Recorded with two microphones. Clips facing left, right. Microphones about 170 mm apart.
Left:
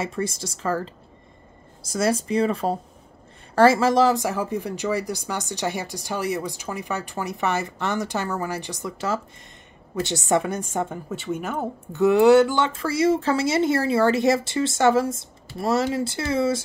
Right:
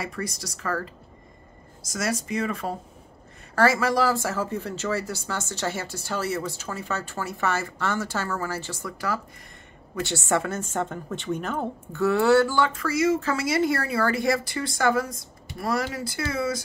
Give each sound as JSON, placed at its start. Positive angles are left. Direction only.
{"t": 0.0, "sound": "speech", "side_deg": 25}
{"t": 11.9, "sound": "speech", "side_deg": 20}